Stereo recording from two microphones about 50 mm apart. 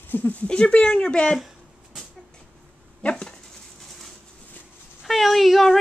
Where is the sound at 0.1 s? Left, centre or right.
Left.